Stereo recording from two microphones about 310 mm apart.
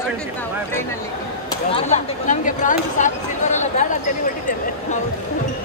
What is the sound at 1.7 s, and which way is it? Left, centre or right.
Chatter, left.